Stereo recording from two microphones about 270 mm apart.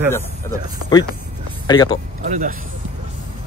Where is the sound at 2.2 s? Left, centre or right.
Right.